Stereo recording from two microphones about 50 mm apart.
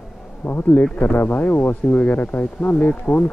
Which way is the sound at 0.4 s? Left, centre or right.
Left.